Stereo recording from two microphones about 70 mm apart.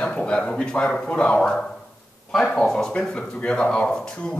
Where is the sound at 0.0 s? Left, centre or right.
Centre.